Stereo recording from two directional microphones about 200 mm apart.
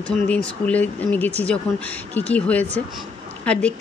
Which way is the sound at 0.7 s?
10° left (ahead or behind).